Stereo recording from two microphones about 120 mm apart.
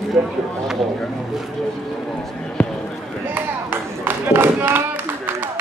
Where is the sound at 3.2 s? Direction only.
15° right (ahead or behind).